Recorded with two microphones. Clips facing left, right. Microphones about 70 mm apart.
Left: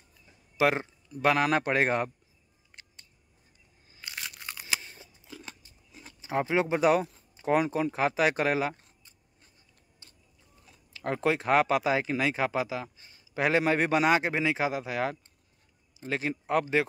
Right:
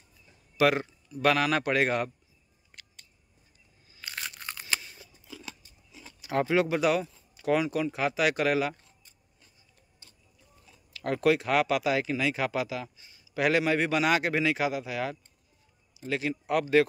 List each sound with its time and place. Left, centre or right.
0.6 s a man's voice: left
4.0 s crunch: centre
4.8 s scissors: left
6.2 s a man's voice: left
10.6 s speech: left